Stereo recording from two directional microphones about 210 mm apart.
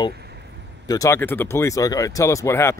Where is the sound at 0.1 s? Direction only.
50° right (ahead or behind).